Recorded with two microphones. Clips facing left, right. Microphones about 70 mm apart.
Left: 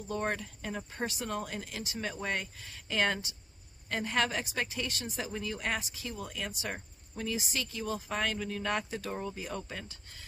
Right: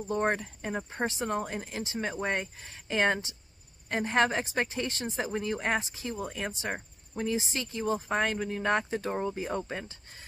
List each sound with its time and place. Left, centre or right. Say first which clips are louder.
0.0 s a woman's voice: right 5 dB; right